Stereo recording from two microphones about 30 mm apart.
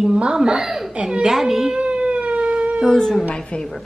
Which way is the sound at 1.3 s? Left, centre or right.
Centre.